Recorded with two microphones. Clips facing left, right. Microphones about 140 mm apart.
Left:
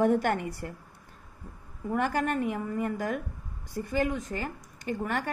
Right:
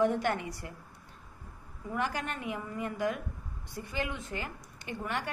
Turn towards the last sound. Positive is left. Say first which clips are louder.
# left 5 dB
turn(degrees=45)  # may be behind; listen again after turning